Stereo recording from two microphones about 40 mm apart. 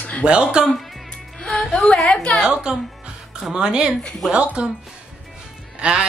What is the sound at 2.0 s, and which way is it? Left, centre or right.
Speech, left.